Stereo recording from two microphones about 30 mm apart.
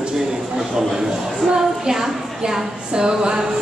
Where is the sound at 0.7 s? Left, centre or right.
Centre.